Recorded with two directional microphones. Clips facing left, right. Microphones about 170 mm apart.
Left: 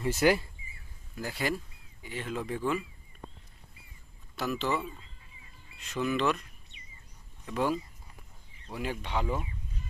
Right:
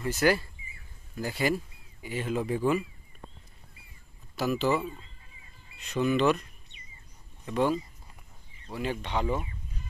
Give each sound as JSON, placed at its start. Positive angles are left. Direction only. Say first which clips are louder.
{"t": 0.0, "sound": "speech", "louder": "even", "side_deg": 20}
{"t": 1.1, "sound": "speech", "louder": "right 4 dB", "side_deg": 0}
{"t": 4.4, "sound": "speech", "louder": "right 5 dB", "side_deg": -5}
{"t": 5.8, "sound": "speech", "louder": "right 4 dB", "side_deg": 0}
{"t": 7.4, "sound": "speech", "louder": "right 3 dB", "side_deg": 5}